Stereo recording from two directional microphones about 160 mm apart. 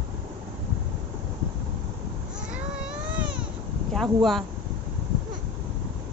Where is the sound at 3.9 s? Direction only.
Centre (ahead or behind).